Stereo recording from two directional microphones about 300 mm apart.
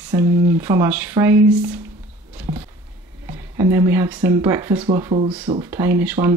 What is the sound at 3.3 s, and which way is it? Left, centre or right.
Speech, centre.